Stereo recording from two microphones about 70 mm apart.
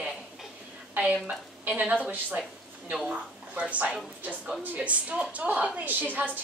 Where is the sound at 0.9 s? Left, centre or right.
Centre.